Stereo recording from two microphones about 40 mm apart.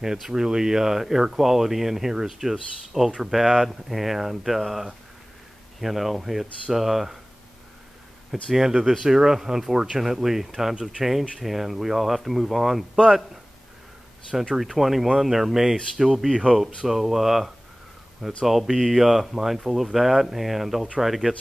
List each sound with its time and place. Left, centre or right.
0.0 s speech: centre
5.8 s speech: centre
8.3 s speech: centre
10.7 s speech: right
11.0 s speech: centre
14.5 s speech: centre